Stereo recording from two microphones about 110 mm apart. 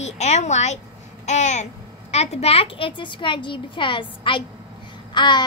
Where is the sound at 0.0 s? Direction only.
90° left.